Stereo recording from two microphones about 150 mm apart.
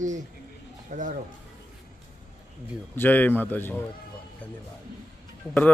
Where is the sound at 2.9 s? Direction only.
10° left (ahead or behind).